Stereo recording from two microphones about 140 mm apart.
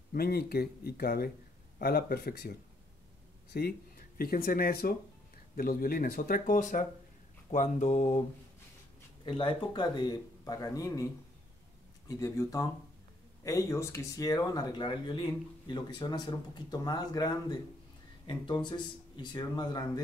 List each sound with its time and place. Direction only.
0.1 s speech: 90° left
3.5 s speech: 90° left; by 6.9 s 65° left (ahead or behind)
7.5 s a sound: 60° left (ahead or behind)
9.2 s speech: 40° left (ahead or behind)
12.1 s speech: 25° left (ahead or behind)